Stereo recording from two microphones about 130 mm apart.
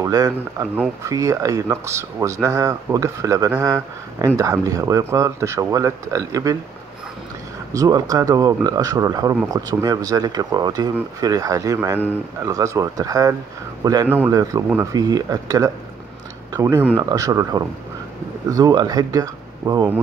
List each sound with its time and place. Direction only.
0.0 s speech: 25° right (ahead or behind)
7.7 s speech: 25° right (ahead or behind)
14.0 s speech: 15° right (ahead or behind)
14.3 s speech: 25° right (ahead or behind)